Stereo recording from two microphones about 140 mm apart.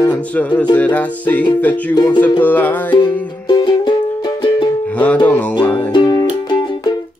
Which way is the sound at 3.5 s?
30° left (ahead or behind).